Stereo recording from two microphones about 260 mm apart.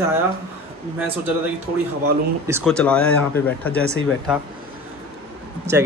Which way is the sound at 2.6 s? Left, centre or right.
Centre.